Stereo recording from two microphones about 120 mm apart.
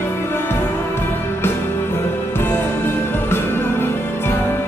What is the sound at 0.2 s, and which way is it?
Music, 20° left (ahead or behind).